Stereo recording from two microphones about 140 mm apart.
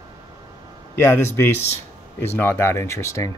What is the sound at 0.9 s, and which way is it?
Speech, 15° left (ahead or behind).